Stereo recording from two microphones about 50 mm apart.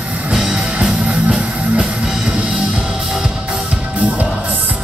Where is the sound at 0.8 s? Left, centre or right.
Centre.